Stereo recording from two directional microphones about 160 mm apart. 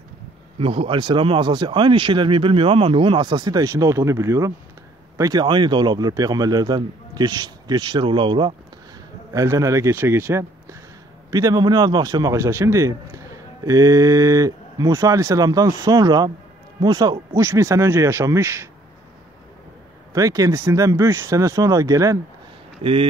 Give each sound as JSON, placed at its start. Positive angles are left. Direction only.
{"t": 0.6, "sound": "speech", "side_deg": -35}
{"t": 9.3, "sound": "speech", "side_deg": -20}
{"t": 20.1, "sound": "speech", "side_deg": -20}